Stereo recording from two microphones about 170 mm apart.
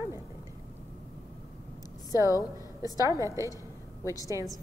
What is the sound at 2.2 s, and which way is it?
Speech, 20° left (ahead or behind).